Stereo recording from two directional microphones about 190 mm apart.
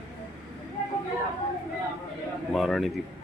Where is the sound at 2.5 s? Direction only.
Centre (ahead or behind).